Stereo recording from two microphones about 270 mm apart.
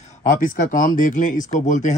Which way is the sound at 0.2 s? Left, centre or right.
Left.